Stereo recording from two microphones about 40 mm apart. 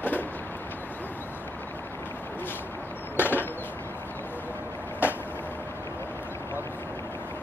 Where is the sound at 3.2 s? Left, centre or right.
Left.